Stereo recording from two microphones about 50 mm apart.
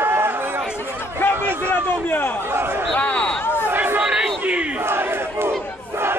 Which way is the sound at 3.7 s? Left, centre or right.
Right.